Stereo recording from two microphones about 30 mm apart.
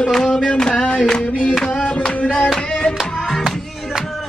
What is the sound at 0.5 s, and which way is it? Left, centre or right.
Speech, left.